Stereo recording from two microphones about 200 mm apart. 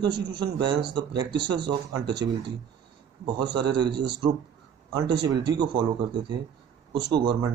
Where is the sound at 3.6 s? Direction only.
20° right (ahead or behind).